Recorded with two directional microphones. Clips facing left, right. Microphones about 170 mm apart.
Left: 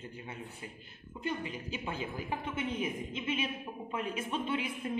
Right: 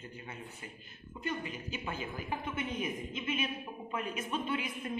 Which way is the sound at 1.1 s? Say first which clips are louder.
Left 1 dB; 25° left (ahead or behind).